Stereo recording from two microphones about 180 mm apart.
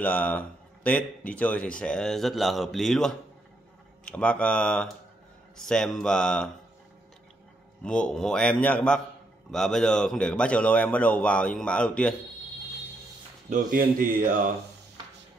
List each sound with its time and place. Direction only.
0.0 s speech: 10° left (ahead or behind)
7.8 s speech: 5° left (ahead or behind)
13.5 s speech: 50° right (ahead or behind)